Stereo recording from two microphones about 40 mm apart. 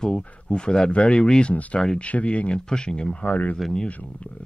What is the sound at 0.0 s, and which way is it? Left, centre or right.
Speech, left.